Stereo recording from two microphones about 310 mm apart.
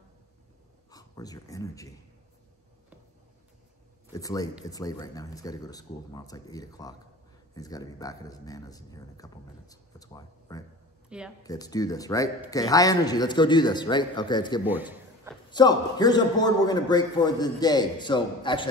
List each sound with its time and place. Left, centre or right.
0.8 s speech: centre
4.1 s a man's voice: centre
11.1 s speech: centre
11.4 s a man's voice: centre
14.7 s a man's voice: centre
15.5 s a man's voice: centre